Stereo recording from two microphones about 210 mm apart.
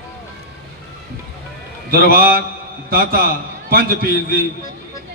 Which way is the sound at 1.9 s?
45° right (ahead or behind).